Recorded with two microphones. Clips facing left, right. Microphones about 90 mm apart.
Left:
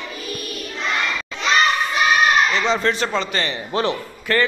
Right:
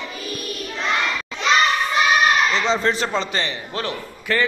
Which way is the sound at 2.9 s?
30° right (ahead or behind).